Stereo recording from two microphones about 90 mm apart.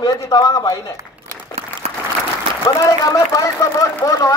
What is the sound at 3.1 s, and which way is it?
Speech, 40° left (ahead or behind).